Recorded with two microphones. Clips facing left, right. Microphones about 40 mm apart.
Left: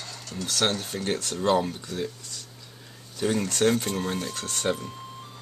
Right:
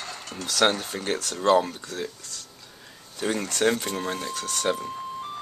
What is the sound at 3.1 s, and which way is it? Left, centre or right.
Speech, centre.